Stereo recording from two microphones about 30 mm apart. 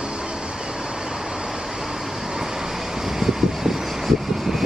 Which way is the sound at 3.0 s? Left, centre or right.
Centre.